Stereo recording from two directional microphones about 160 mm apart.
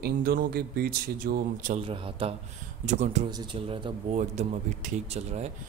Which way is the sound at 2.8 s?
50° right (ahead or behind).